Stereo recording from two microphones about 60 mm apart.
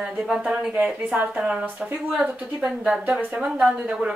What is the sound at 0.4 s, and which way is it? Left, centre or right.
Speech, centre.